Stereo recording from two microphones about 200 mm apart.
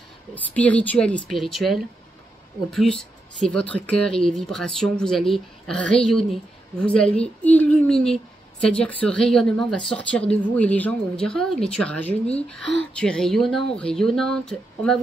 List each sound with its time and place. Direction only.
0.3 s a woman's voice: 5° left (ahead or behind)